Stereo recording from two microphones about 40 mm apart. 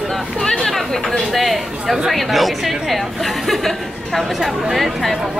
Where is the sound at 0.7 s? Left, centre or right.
Centre.